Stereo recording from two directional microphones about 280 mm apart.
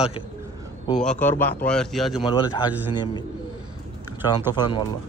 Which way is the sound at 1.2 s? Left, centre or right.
Centre.